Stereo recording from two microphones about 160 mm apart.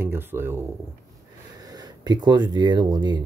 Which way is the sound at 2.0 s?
30° right (ahead or behind).